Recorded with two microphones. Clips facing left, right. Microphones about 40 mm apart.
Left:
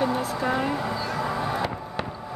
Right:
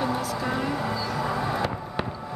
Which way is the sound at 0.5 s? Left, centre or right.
Centre.